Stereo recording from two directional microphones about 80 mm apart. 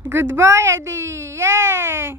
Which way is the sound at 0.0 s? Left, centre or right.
Right.